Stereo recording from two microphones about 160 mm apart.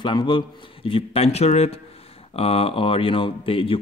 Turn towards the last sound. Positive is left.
turn(degrees=35)  # may be behind; listen again after turning